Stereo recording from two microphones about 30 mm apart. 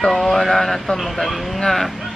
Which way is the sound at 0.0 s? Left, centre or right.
Centre.